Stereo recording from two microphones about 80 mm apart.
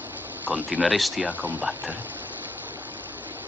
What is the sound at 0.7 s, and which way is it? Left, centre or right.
Speech, centre.